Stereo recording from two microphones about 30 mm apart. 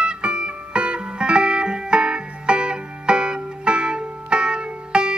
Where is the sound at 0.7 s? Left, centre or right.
Right.